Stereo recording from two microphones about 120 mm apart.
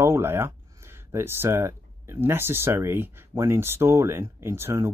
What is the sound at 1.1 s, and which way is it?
Speech, 20° right (ahead or behind).